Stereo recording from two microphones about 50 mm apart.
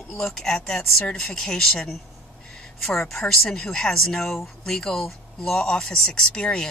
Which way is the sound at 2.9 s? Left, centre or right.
Centre.